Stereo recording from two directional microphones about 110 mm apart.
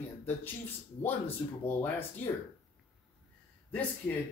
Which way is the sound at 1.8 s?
20° left (ahead or behind).